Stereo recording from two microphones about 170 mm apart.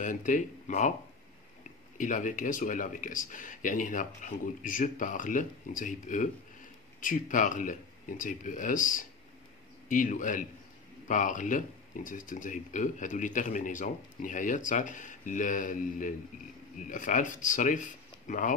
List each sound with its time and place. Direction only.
0.0 s speech: 50° left (ahead or behind)
2.0 s speech: 50° left (ahead or behind)